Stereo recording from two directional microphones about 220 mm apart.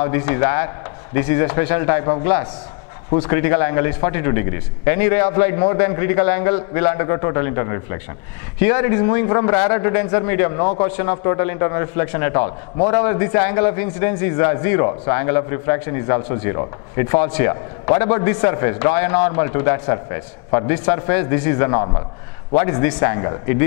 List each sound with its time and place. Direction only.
0.0 s a man's voice: 15° left (ahead or behind)
3.2 s a man's voice: 15° left (ahead or behind)
21.7 s a man's voice: 25° left (ahead or behind)
22.6 s a man's voice: 15° left (ahead or behind)